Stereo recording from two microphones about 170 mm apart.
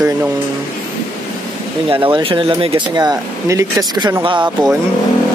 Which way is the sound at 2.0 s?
30° right (ahead or behind).